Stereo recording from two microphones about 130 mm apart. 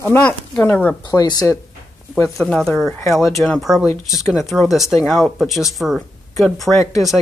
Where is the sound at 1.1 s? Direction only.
30° left (ahead or behind).